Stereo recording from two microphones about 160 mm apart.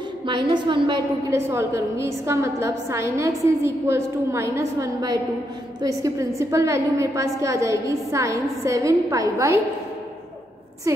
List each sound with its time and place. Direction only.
0.3 s a woman's voice: 30° right (ahead or behind)
1.3 s a woman's voice: 15° right (ahead or behind)